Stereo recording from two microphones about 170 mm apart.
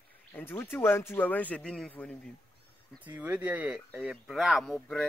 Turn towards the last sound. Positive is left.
turn(degrees=0)  # may be behind; listen again after turning